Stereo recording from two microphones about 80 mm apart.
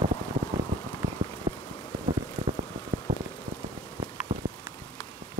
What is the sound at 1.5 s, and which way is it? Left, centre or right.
Rain, right.